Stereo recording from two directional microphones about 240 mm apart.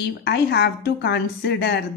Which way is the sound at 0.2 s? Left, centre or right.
Left.